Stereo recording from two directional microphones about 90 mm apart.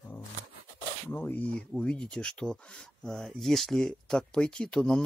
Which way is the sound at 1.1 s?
20° left (ahead or behind).